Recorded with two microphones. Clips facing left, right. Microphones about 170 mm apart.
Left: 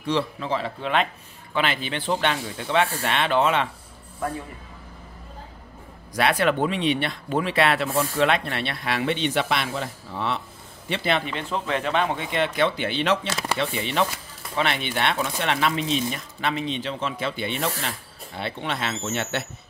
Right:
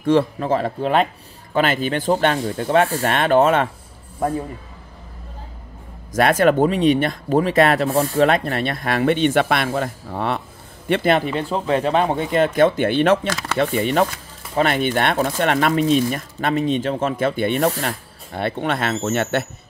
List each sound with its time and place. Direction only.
0.0 s speech: 50° right (ahead or behind)
6.1 s speech: 45° right (ahead or behind)